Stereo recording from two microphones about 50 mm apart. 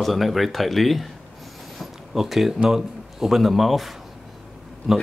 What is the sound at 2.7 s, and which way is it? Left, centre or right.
Speech, centre.